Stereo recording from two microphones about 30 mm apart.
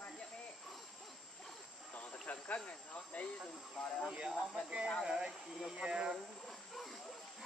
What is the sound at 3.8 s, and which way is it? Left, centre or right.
Speech, centre.